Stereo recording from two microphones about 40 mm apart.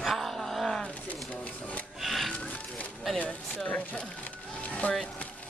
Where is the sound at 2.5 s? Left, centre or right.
Left.